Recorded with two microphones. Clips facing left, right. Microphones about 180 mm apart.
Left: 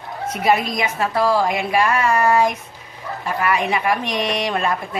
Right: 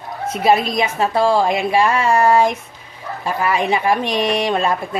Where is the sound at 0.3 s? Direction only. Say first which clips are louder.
Right 3 dB; 25° right (ahead or behind).